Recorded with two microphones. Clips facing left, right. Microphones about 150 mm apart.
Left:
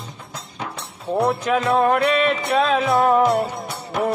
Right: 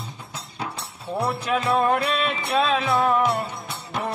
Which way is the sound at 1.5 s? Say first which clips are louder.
Left 2 dB; 45° left (ahead or behind).